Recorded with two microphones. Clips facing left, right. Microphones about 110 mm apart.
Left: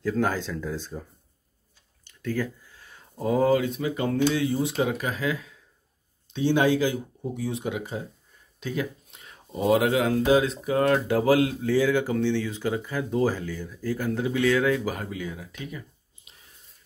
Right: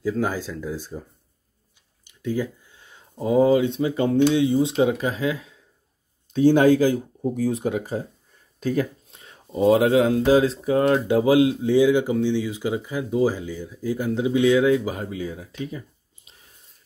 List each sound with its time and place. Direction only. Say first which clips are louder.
0.0 s speech: right 1 dB; 10° right (ahead or behind)
2.0 s speech: right 3 dB; 15° right (ahead or behind)
6.3 s speech: right 6 dB; 45° right (ahead or behind)
16.3 s a sound: right 1 dB; 35° right (ahead or behind)